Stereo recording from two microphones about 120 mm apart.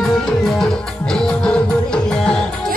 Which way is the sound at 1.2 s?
5° left (ahead or behind).